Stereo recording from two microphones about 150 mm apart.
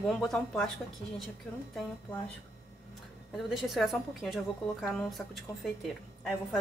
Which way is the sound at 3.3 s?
Centre (ahead or behind).